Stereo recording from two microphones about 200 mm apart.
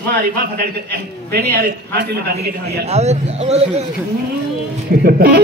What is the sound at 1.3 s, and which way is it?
Speech, 55° right (ahead or behind).